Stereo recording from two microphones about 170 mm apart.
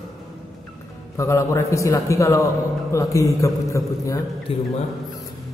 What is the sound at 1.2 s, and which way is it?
A man's voice, 15° left (ahead or behind).